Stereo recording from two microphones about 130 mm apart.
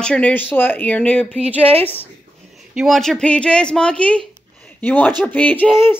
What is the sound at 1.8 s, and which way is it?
Speech, 15° left (ahead or behind).